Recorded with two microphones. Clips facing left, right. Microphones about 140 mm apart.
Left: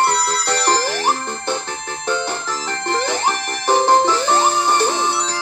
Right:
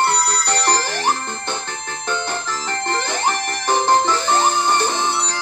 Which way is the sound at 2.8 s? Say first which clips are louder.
Left 2 dB; 10° left (ahead or behind).